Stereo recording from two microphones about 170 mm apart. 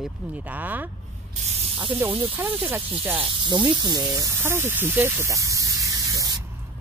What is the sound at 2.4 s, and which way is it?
Speech, 10° right (ahead or behind).